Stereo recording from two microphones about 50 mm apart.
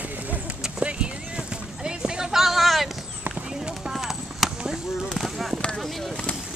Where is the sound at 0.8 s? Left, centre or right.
Right; by 2.9 s centre.